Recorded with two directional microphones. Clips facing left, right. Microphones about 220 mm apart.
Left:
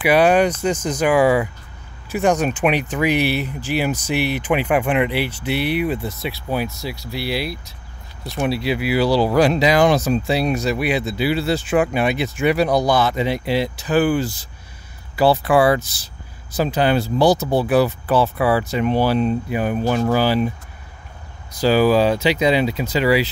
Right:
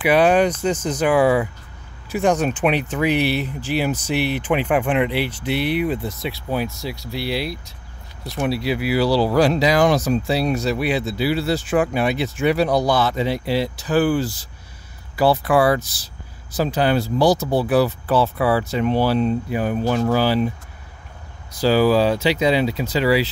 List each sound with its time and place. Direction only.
0.0 s speech: 5° left (ahead or behind)
8.3 s speech: 25° left (ahead or behind)
21.5 s speech: 15° left (ahead or behind)